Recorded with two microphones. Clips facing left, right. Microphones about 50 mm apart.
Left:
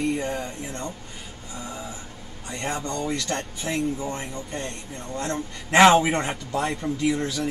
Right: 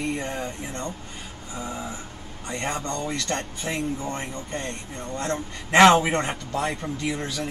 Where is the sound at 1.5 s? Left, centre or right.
Right.